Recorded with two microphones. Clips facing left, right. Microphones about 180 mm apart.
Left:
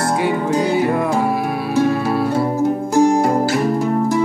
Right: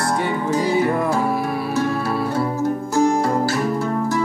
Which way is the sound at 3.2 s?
20° left (ahead or behind).